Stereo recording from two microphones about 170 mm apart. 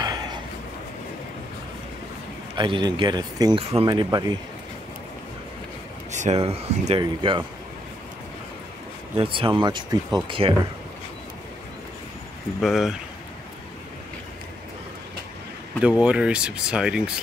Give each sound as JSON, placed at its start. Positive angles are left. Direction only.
{"t": 0.0, "sound": "a sound", "side_deg": -25}
{"t": 2.5, "sound": "speech", "side_deg": -25}
{"t": 6.1, "sound": "speech", "side_deg": -40}
{"t": 7.0, "sound": "speech", "side_deg": -30}
{"t": 9.1, "sound": "speech", "side_deg": -30}
{"t": 12.5, "sound": "speech", "side_deg": 0}
{"t": 15.8, "sound": "speech", "side_deg": -5}